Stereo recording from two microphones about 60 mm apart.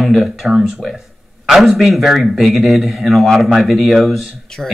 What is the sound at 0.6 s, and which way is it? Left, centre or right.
Speech, centre.